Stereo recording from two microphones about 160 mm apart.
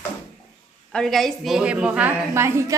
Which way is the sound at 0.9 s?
Centre (ahead or behind).